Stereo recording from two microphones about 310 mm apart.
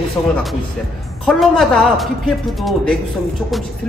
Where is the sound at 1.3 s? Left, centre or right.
Centre.